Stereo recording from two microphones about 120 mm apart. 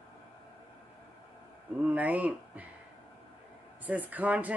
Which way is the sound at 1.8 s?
10° right (ahead or behind).